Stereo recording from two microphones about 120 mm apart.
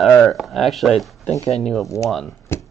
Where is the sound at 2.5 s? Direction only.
20° left (ahead or behind).